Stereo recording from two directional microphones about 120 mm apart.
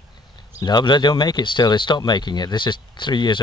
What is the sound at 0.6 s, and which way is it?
Speech, 35° left (ahead or behind).